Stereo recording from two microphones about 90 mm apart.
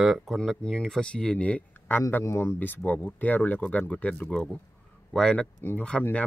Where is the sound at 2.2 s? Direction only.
30° left (ahead or behind); by 5.5 s 10° left (ahead or behind).